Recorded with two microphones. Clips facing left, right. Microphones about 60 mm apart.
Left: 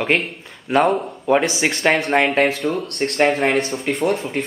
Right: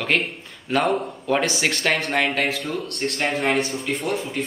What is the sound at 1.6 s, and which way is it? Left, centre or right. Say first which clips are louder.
Speech: left 4 dB; centre.